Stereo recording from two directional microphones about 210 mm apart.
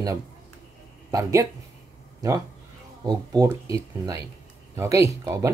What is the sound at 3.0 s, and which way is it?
Speech, 15° right (ahead or behind).